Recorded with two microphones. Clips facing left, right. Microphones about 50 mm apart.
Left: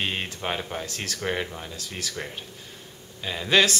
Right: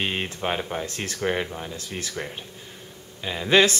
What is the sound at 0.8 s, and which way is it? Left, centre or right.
Speech, right.